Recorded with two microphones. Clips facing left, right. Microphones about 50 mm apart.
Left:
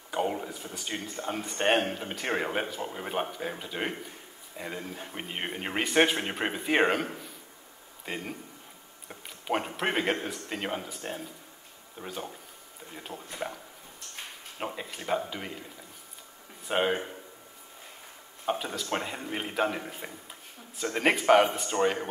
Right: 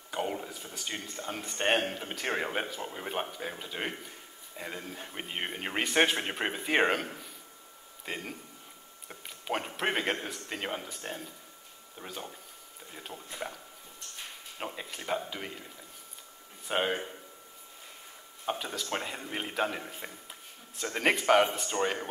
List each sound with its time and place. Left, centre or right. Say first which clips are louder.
0.1 s a man's voice: left 4 dB; centre
13.1 s speech: left 4 dB; left
14.6 s speech: left 3 dB; centre
16.6 s speech: left 3 dB; centre
18.4 s a man's voice: left 3 dB; centre